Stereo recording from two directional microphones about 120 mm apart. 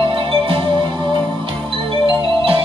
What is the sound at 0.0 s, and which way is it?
Music, 45° right (ahead or behind).